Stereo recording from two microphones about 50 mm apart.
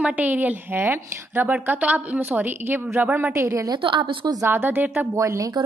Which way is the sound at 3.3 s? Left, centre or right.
Right.